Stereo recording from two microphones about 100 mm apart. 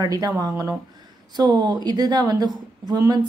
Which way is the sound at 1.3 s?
45° right (ahead or behind).